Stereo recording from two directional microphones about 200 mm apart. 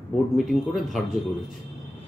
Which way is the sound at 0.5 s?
Centre (ahead or behind).